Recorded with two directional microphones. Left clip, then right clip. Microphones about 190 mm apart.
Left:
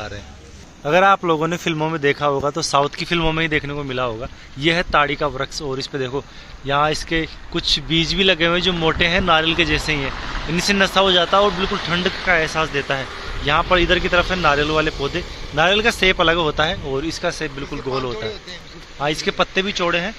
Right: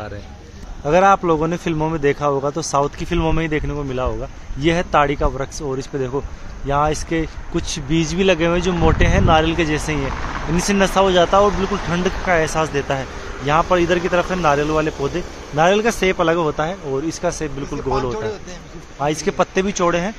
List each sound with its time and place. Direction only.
0.8 s a man's voice: centre (ahead or behind)
19.1 s speech: 5° right (ahead or behind)